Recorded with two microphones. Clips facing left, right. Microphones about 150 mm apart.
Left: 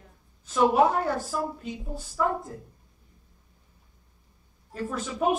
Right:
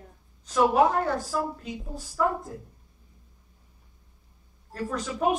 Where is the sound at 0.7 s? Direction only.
5° left (ahead or behind).